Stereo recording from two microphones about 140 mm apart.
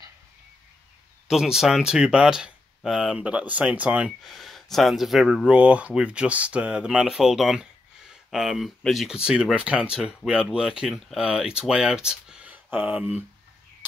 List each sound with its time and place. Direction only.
1.2 s speech: 5° right (ahead or behind)